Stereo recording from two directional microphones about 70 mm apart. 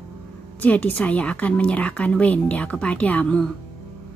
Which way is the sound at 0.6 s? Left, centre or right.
Left.